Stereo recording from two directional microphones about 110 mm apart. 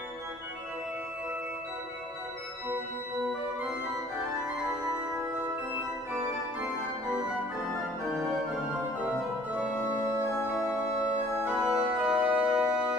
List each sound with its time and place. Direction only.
11.3 s organ: 15° right (ahead or behind)